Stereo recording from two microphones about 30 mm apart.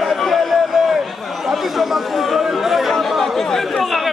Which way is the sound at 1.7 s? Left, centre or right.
Centre.